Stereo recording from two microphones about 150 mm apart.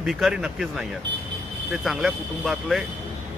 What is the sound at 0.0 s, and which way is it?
A man's voice, centre (ahead or behind).